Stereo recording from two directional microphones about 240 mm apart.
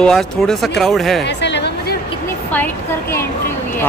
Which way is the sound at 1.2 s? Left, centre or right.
Left.